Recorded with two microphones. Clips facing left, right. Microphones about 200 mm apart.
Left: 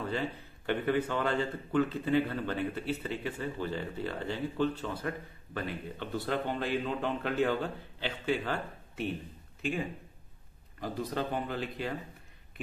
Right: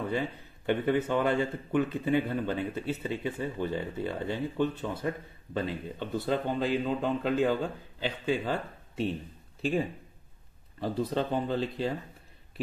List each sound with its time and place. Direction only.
0.7 s speech: 25° right (ahead or behind)